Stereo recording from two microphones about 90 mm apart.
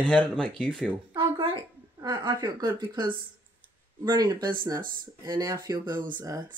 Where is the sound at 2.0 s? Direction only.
55° right (ahead or behind).